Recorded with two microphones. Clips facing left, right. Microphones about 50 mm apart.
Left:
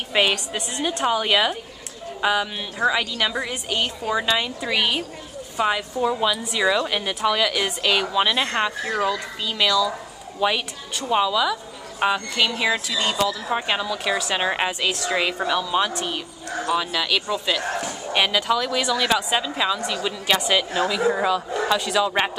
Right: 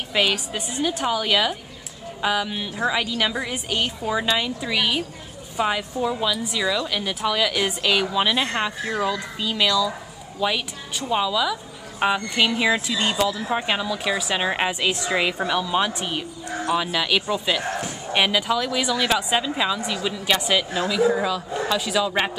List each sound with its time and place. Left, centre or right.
0.3 s speech: centre
7.2 s speech: centre
10.4 s speech: centre
11.1 s speech: centre
12.0 s speech: centre
13.5 s speech: centre
21.1 s speech: centre
21.7 s speech: centre